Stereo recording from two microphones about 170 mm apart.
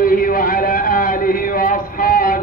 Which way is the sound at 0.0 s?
55° left (ahead or behind).